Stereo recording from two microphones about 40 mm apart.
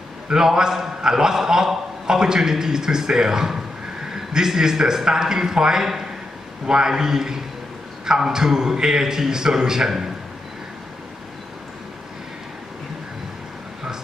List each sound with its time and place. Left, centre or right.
0.3 s a man's voice: centre